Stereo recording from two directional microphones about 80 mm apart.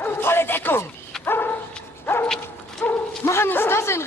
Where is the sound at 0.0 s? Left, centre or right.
Left.